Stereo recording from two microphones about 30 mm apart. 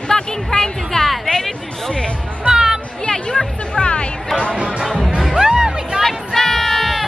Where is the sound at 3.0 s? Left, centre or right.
Left.